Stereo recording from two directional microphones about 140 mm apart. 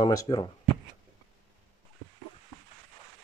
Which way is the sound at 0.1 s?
25° left (ahead or behind).